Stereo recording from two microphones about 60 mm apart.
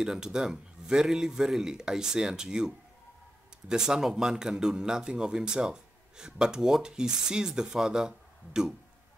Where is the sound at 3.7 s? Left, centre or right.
Centre.